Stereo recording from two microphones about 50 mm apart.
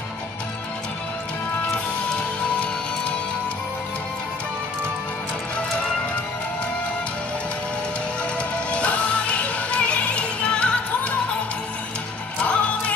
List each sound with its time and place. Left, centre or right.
2.1 s music: left
8.4 s music: left
12.4 s music: left